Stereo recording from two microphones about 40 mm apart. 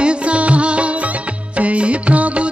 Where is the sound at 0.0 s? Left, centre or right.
Right.